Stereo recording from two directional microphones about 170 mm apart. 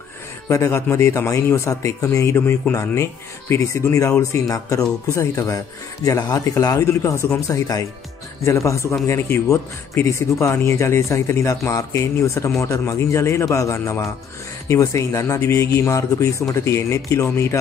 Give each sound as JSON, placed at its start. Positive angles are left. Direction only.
{"t": 0.5, "sound": "speech", "side_deg": 15}